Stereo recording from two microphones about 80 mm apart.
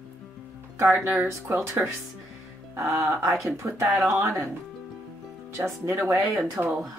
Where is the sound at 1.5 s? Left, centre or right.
Right.